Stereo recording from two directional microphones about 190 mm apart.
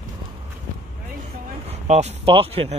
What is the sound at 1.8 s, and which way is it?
Speech, 35° right (ahead or behind).